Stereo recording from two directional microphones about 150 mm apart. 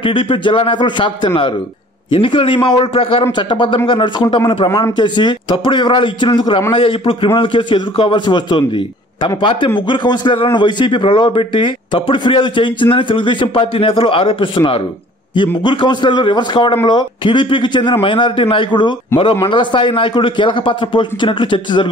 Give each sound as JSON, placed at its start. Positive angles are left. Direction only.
{"t": 0.0, "sound": "a man's voice", "side_deg": 35}